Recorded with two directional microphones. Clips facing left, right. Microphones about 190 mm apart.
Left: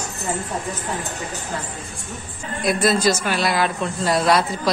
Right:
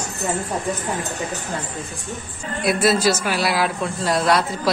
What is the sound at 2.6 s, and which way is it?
A man's voice, 5° right (ahead or behind).